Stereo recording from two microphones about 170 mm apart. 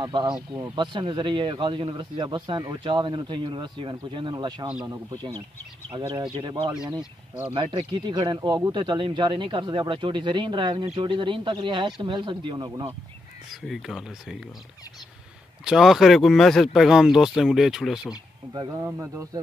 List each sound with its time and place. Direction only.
0.0 s speech: 25° right (ahead or behind)
7.0 s speech: 10° right (ahead or behind)
7.5 s speech: 30° right (ahead or behind)
13.7 s speech: centre (ahead or behind)
15.6 s speech: centre (ahead or behind)
18.9 s speech: 15° right (ahead or behind)